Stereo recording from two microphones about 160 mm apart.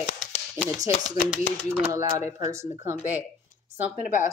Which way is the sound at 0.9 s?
50° left (ahead or behind).